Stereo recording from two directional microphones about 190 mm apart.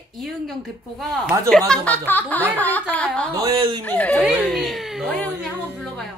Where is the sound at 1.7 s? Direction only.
10° left (ahead or behind).